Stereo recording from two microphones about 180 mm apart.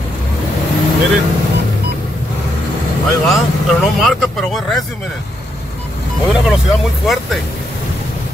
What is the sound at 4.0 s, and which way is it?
Speech, centre (ahead or behind).